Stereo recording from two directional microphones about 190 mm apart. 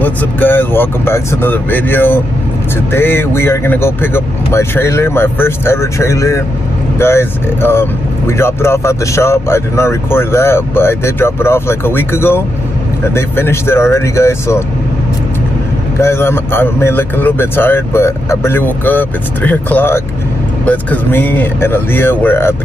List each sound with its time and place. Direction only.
0.0 s speech: 10° left (ahead or behind)
16.0 s speech: 15° left (ahead or behind)